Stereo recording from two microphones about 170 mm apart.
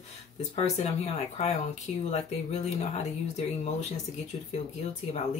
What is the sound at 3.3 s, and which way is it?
Speech, 40° left (ahead or behind).